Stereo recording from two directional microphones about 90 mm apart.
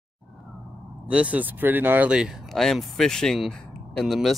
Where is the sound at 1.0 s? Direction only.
15° right (ahead or behind).